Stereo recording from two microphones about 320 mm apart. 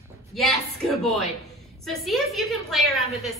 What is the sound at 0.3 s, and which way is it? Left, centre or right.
A woman's voice, centre.